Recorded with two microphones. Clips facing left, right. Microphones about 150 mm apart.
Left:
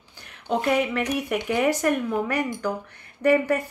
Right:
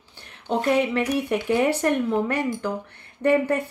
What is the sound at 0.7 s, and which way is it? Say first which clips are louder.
Speech: right 2 dB; 30° right (ahead or behind).